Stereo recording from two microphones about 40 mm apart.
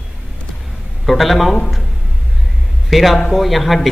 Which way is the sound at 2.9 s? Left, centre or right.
Centre.